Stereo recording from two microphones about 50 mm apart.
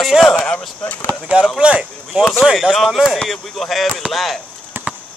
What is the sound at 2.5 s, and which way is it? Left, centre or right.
Speech, centre.